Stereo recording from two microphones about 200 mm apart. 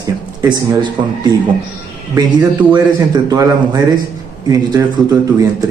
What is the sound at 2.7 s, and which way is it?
Speech, 20° right (ahead or behind).